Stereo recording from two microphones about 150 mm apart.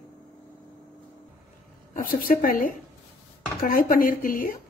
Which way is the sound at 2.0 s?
70° left (ahead or behind).